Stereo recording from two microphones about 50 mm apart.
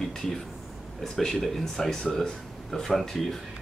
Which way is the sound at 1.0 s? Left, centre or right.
Centre.